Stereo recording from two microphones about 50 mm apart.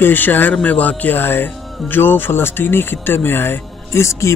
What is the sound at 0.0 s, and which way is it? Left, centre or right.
Speech, left.